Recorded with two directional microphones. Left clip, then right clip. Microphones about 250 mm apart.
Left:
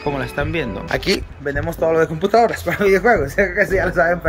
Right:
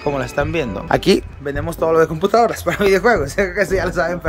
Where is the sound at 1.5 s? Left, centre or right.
Centre.